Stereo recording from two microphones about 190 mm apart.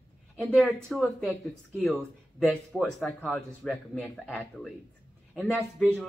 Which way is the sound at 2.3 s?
5° left (ahead or behind).